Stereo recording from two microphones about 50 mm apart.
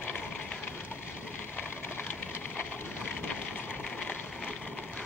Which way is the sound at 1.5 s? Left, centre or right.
Left.